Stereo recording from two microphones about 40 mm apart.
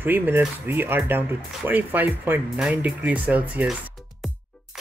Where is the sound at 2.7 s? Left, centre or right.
Right.